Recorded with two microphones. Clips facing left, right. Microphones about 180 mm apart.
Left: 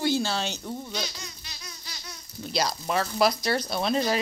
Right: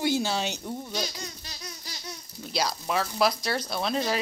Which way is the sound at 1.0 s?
40° right (ahead or behind).